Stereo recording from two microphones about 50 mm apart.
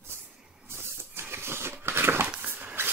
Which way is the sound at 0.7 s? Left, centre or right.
Right.